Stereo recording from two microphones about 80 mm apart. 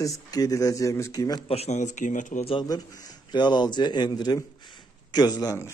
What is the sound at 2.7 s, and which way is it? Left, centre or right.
A man's voice, left.